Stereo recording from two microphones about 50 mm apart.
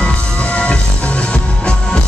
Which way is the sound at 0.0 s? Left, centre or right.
Left.